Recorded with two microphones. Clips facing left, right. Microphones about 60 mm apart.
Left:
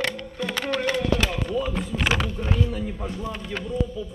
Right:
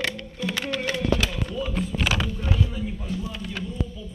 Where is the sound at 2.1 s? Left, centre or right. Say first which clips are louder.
Left 1 dB; left.